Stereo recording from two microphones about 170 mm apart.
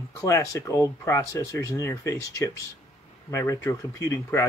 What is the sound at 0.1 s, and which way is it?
Speech, 20° left (ahead or behind).